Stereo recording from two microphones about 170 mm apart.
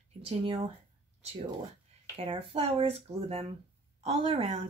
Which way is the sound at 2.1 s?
35° right (ahead or behind).